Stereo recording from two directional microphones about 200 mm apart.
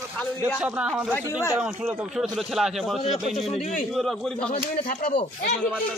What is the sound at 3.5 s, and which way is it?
Speech, 35° left (ahead or behind).